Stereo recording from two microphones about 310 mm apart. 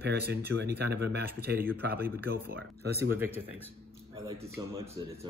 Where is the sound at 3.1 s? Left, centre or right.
Centre.